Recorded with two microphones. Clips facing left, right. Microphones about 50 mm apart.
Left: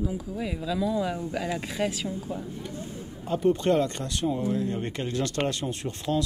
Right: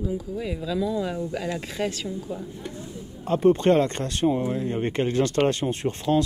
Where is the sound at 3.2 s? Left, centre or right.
Right.